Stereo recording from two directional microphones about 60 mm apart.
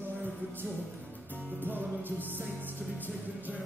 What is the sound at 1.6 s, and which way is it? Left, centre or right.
Music, right.